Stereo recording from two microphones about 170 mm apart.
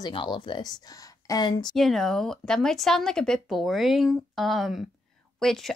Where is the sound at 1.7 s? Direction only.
Centre (ahead or behind).